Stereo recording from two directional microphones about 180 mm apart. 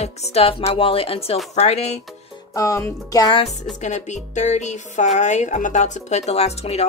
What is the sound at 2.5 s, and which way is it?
Speech, 15° left (ahead or behind).